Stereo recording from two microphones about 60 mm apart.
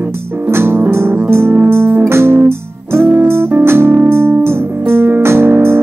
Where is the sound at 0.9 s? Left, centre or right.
Right.